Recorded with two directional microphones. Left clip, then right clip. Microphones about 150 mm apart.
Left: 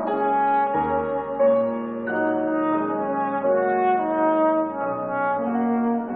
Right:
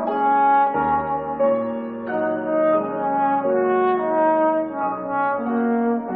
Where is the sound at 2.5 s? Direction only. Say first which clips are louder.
Right 4 dB; 25° right (ahead or behind).